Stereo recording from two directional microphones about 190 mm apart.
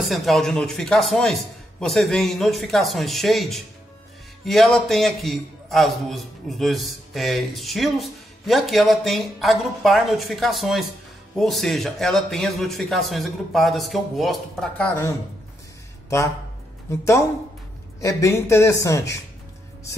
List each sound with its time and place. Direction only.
0.0 s a man's voice: centre (ahead or behind); by 19.1 s 15° left (ahead or behind)